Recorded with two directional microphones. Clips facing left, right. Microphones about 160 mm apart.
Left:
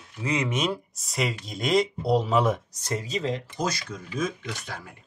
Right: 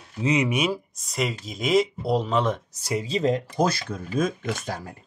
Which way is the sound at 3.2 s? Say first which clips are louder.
Right 6 dB; 40° right (ahead or behind).